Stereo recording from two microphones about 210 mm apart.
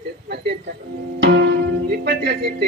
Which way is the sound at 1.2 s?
50° right (ahead or behind).